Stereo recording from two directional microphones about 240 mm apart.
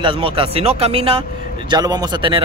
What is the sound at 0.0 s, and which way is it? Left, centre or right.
Speech, right.